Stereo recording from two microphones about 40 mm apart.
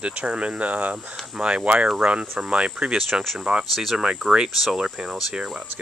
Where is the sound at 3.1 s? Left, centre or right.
Centre.